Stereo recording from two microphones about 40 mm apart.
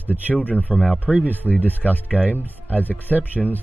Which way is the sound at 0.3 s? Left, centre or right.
Left.